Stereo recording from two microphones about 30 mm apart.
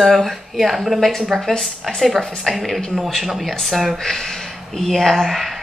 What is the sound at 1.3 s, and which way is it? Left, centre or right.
Speech, centre.